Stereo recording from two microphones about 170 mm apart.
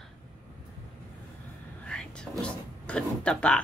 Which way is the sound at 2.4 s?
5° left (ahead or behind).